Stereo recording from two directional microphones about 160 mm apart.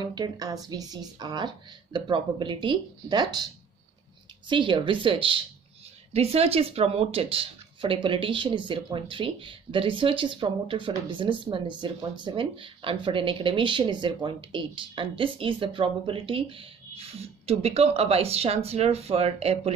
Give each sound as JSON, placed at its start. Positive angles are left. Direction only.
{"t": 0.0, "sound": "speech", "side_deg": -25}
{"t": 4.5, "sound": "speech", "side_deg": -30}